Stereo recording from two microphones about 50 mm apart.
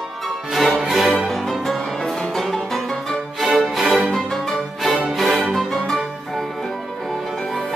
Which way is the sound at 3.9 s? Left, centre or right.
Centre.